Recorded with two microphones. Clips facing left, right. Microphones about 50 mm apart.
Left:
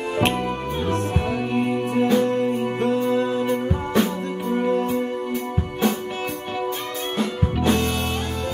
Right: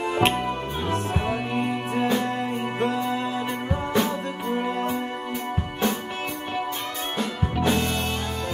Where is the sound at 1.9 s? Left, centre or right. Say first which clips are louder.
Left 5 dB; centre.